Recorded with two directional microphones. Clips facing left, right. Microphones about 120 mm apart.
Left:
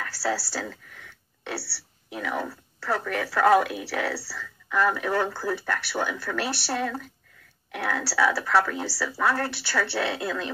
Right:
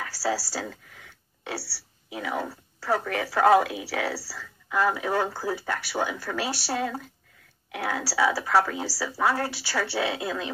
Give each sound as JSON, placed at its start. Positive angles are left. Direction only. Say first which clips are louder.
{"t": 0.0, "sound": "a woman's voice", "louder": "even", "side_deg": -15}
{"t": 2.0, "sound": "a woman's voice", "louder": "even", "side_deg": -15}